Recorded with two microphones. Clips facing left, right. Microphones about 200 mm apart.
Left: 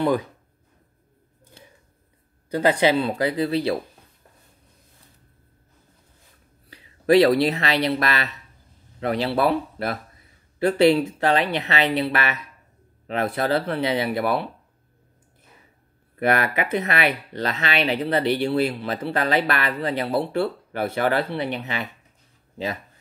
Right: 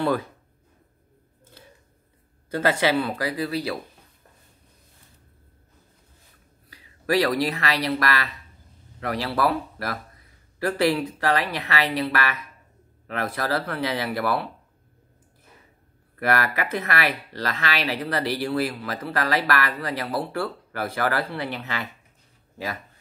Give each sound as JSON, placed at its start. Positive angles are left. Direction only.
{"t": 2.5, "sound": "speech", "side_deg": 20}
{"t": 6.7, "sound": "speech", "side_deg": 25}
{"t": 16.2, "sound": "speech", "side_deg": 20}